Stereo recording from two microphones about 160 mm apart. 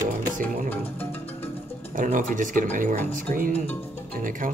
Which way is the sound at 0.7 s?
10° left (ahead or behind).